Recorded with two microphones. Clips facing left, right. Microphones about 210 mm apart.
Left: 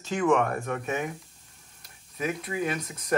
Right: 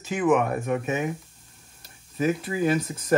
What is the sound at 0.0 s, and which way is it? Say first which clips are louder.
Speech: right 2 dB; 15° right (ahead or behind).